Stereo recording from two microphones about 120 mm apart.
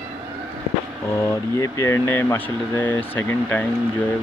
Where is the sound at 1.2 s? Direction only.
25° left (ahead or behind).